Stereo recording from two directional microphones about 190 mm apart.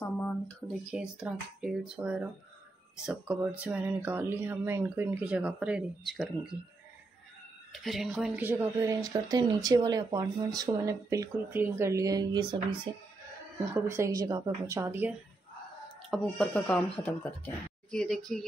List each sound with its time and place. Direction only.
0.0 s a sound: 5° left (ahead or behind)
0.9 s speech: 5° right (ahead or behind)
7.8 s speech: centre (ahead or behind)
9.0 s speech: 20° right (ahead or behind)
16.1 s speech: 5° left (ahead or behind)